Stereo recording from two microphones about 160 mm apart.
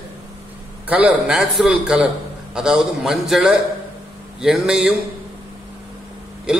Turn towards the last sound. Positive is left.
turn(degrees=-5)  # may be behind; listen again after turning